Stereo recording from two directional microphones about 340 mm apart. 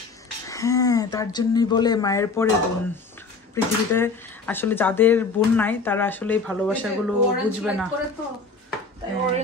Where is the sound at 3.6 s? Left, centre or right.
Centre.